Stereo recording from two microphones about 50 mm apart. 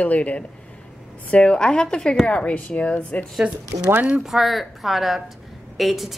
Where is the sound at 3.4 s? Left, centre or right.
Centre.